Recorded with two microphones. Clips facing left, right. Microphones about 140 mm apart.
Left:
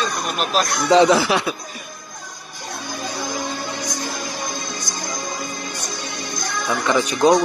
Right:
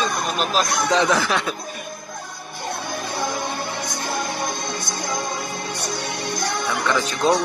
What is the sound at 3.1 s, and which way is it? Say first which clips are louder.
Music: right 1 dB; 60° right (ahead or behind).